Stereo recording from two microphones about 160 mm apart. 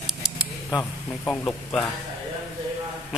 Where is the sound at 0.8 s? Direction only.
10° left (ahead or behind).